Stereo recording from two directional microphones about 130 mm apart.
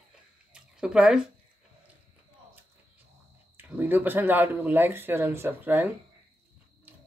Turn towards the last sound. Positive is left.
turn(degrees=-15)  # may be behind; listen again after turning